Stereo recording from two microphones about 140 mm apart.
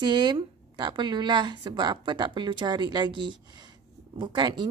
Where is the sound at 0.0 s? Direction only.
30° right (ahead or behind).